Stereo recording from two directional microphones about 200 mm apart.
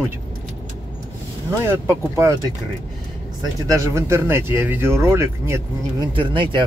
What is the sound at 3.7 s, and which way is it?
Speech, 15° right (ahead or behind).